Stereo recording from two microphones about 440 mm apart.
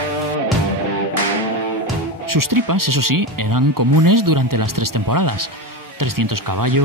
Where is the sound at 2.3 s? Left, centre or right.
Right.